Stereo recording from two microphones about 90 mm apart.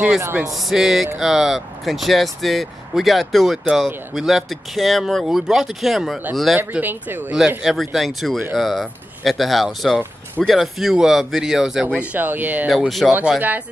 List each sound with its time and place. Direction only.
0.4 s speech: centre (ahead or behind)
6.7 s speech: 20° right (ahead or behind)
7.3 s speech: 5° right (ahead or behind)
12.6 s speech: 5° right (ahead or behind)